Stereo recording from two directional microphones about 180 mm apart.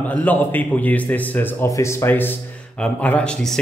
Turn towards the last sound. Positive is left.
turn(degrees=5)  # may be behind; listen again after turning